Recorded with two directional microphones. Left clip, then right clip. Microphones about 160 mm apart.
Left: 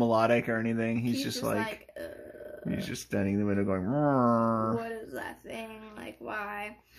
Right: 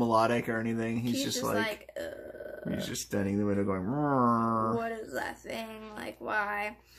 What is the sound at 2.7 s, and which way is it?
Speech, 25° left (ahead or behind).